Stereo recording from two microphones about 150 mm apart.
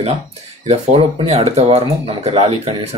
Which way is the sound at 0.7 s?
45° right (ahead or behind).